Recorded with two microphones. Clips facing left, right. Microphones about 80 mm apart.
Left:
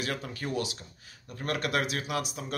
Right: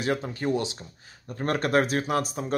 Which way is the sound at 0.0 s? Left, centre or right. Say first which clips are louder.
Right 7 dB; right.